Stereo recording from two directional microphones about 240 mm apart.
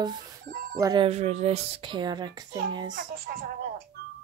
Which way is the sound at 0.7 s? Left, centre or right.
Centre.